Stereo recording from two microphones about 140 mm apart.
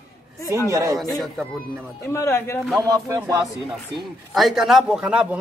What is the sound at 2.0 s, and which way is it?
Speech, 20° left (ahead or behind).